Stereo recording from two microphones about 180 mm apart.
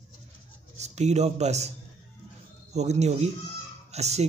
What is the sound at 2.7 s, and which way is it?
A man's voice, 40° right (ahead or behind).